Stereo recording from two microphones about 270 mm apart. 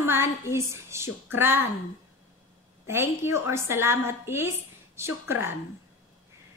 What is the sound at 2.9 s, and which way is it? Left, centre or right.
A woman's voice, centre.